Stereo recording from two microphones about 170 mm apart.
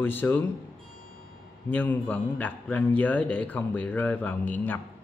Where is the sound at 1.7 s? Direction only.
10° left (ahead or behind).